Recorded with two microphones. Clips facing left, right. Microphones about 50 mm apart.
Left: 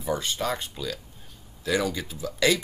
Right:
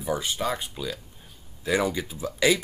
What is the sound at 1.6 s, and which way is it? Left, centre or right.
Speech, right.